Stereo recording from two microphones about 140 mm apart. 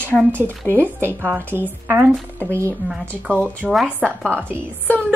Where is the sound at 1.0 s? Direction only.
15° right (ahead or behind).